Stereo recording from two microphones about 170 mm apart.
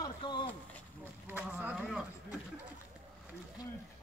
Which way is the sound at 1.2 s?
10° right (ahead or behind).